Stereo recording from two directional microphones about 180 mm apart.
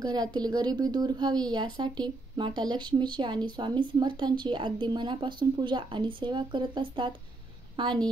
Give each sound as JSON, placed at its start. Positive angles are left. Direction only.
{"t": 0.0, "sound": "a woman's voice", "side_deg": -25}